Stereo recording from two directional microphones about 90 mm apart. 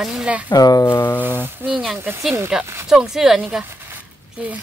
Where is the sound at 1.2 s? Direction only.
25° right (ahead or behind).